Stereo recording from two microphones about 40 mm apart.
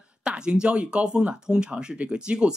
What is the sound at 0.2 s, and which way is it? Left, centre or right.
Speech, right.